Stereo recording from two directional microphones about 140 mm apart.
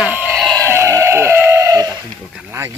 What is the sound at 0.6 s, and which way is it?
Chicken, 20° right (ahead or behind).